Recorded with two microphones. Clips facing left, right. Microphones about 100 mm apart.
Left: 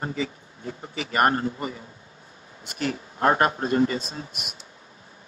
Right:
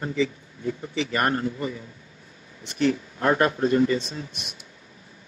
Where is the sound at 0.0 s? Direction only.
35° left (ahead or behind).